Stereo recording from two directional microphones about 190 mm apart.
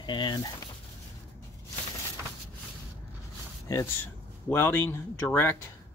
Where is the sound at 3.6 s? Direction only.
15° left (ahead or behind).